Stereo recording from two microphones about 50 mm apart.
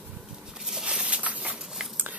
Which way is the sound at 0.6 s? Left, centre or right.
Centre.